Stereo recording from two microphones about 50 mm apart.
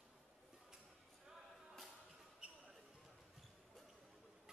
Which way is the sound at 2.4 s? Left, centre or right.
Right.